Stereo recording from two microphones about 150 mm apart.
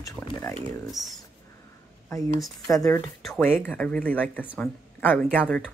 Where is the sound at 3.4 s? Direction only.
10° left (ahead or behind).